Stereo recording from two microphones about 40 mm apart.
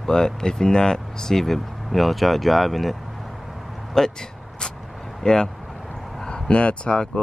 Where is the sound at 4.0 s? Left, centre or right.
Centre.